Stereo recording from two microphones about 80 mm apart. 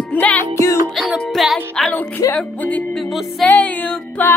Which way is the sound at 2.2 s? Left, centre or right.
Left.